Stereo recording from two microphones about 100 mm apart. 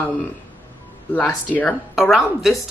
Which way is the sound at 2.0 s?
5° right (ahead or behind).